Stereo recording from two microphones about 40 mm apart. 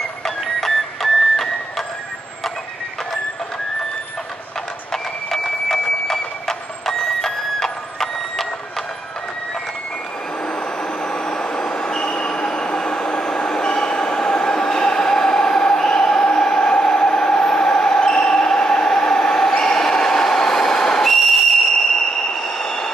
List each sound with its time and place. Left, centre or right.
0.2 s music: centre
4.9 s music: centre
10.4 s vehicle: left; by 21.6 s centre
22.3 s train: centre